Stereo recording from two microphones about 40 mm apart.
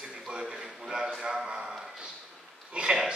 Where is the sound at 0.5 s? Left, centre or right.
Centre.